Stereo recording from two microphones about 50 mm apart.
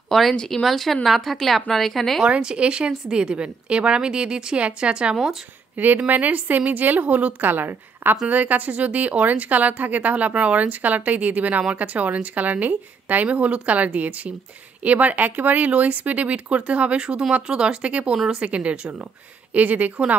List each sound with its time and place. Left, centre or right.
0.1 s a woman's voice: centre
2.2 s a woman's voice: right
5.1 s speech: centre
6.0 s a woman's voice: right
18.1 s speech: centre
18.4 s a woman's voice: right